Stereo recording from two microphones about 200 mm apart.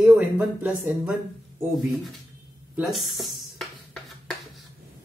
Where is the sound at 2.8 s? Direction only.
Centre (ahead or behind).